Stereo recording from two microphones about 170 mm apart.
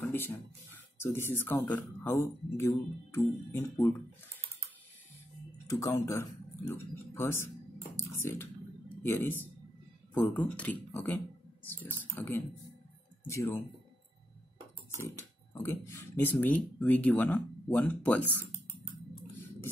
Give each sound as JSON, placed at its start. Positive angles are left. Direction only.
{"t": 0.0, "sound": "a sound", "side_deg": 10}
{"t": 0.9, "sound": "speech", "side_deg": 15}
{"t": 5.7, "sound": "speech", "side_deg": 15}
{"t": 7.9, "sound": "a sound", "side_deg": 15}
{"t": 9.0, "sound": "speech", "side_deg": 15}
{"t": 12.2, "sound": "speech", "side_deg": 15}
{"t": 15.0, "sound": "speech", "side_deg": 15}